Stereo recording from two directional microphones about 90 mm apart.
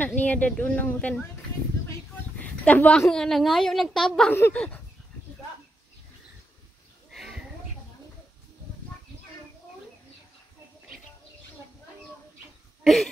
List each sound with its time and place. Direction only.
0.0 s speech: 15° left (ahead or behind)
2.3 s a sound: 15° left (ahead or behind)
3.1 s a woman's voice: 5° left (ahead or behind)
4.3 s speech: 25° left (ahead or behind)
7.1 s a sound: centre (ahead or behind)
12.8 s throat clearing: 5° left (ahead or behind)